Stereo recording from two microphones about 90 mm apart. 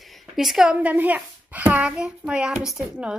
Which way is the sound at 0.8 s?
20° right (ahead or behind).